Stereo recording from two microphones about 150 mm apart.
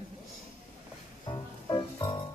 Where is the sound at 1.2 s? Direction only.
30° left (ahead or behind).